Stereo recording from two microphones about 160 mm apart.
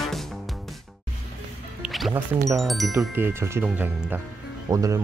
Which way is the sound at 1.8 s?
Centre (ahead or behind).